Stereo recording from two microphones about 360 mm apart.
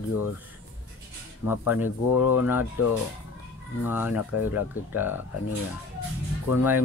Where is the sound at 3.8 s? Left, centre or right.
Centre.